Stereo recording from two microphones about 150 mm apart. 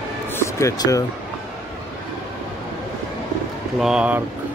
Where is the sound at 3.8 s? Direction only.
5° right (ahead or behind).